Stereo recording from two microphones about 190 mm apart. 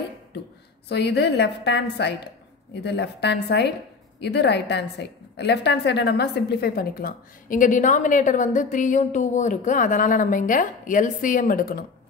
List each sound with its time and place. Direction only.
0.8 s a woman's voice: 60° left (ahead or behind)